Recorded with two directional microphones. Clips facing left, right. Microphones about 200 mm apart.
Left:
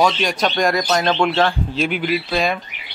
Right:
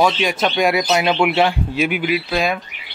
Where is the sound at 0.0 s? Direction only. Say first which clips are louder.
Right 1 dB; 5° right (ahead or behind).